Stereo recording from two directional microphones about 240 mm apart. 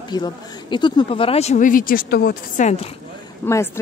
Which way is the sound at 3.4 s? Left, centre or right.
Centre.